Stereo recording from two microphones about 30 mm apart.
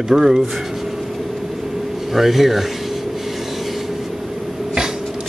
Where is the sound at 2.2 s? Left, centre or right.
Centre.